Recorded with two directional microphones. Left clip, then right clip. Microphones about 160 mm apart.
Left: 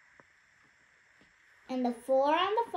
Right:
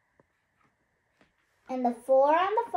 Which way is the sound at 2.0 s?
20° left (ahead or behind).